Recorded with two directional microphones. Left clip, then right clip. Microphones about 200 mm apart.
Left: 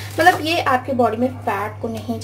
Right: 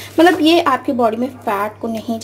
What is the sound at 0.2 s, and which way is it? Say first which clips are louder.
Speech: right 4 dB; 45° right (ahead or behind).